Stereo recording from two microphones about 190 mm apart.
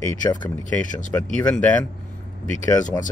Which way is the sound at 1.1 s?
5° left (ahead or behind).